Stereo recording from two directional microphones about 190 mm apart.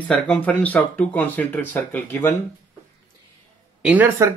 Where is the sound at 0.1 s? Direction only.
5° left (ahead or behind).